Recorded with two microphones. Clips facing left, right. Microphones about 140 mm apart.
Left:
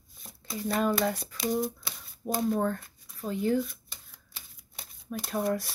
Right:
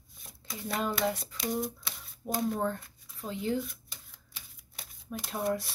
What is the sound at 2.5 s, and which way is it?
Speech, 20° right (ahead or behind).